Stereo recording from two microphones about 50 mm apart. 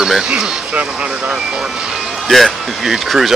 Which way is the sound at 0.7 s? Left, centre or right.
Right.